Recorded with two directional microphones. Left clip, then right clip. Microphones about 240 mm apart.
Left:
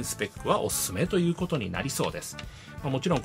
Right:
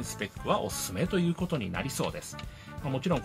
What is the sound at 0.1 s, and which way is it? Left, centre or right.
Speech, centre.